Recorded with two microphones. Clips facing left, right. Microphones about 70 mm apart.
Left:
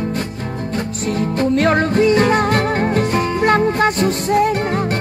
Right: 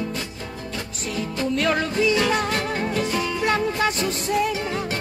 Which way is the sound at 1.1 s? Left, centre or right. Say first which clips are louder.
Left 7 dB; left.